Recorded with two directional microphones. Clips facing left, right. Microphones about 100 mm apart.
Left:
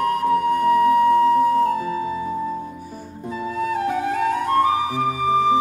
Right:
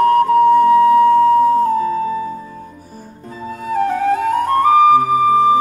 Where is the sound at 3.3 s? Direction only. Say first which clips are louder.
Right 2 dB; 40° right (ahead or behind).